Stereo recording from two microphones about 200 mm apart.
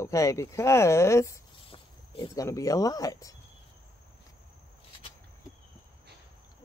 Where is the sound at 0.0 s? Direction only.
15° left (ahead or behind).